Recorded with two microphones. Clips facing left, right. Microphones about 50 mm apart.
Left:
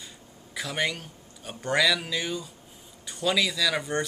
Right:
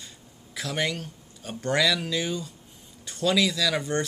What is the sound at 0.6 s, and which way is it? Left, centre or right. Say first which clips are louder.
Speech: right 1 dB; centre.